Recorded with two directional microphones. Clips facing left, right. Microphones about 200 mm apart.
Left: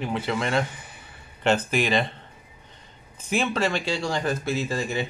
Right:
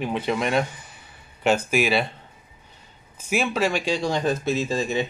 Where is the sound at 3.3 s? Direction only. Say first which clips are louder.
Right 1 dB; 10° right (ahead or behind).